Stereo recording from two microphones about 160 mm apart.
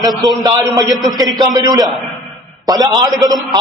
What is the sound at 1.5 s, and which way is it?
Speech, 25° right (ahead or behind).